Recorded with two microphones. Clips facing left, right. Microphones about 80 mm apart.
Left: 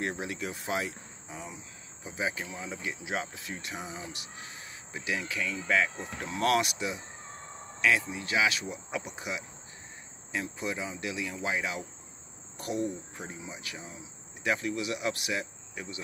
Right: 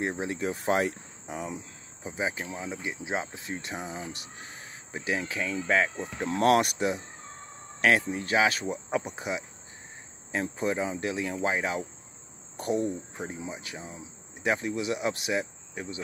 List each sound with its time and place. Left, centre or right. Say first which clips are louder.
0.0 s speech: right 4 dB; right
1.2 s speech: right 8 dB; right
2.0 s speech: right 2 dB; right
8.1 s speech: right 4 dB; right